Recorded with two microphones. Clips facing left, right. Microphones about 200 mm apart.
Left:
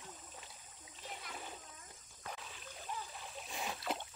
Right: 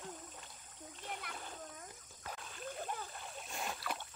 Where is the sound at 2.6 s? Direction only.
50° right (ahead or behind).